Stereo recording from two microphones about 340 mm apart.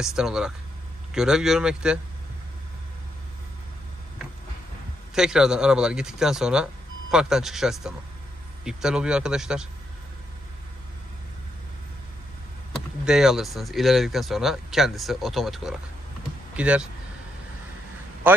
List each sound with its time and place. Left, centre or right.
0.0 s speech: centre
5.1 s speech: centre
13.0 s speech: centre
18.3 s a man's voice: centre